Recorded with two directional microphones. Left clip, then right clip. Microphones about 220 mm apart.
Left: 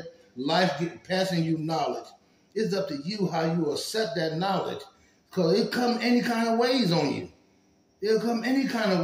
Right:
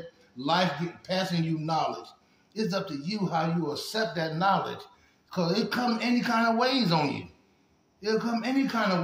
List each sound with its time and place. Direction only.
0.4 s speech: 30° right (ahead or behind)